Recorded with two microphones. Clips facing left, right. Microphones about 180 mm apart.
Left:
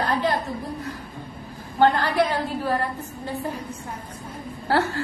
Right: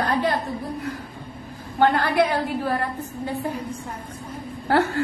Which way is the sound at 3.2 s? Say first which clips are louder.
Right 2 dB; 15° right (ahead or behind).